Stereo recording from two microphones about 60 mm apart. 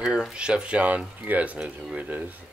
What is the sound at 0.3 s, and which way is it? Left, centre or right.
Speech, centre.